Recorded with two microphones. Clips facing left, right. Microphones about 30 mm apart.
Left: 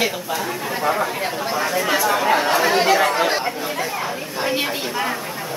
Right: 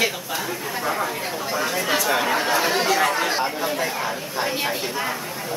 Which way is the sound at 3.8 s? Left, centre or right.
Centre.